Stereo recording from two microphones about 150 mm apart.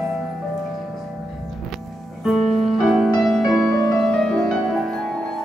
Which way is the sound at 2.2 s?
Centre (ahead or behind).